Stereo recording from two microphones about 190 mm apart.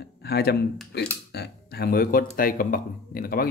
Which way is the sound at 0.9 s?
60° left (ahead or behind).